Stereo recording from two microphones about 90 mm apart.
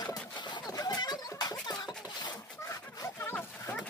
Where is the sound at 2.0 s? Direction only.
55° left (ahead or behind).